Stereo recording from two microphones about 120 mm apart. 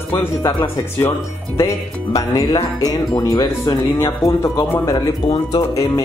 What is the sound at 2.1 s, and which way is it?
Speech, 35° left (ahead or behind).